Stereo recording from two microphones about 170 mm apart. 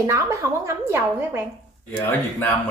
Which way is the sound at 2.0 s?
10° left (ahead or behind).